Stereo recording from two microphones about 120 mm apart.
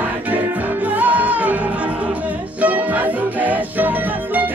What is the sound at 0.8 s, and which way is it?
Music, 15° right (ahead or behind).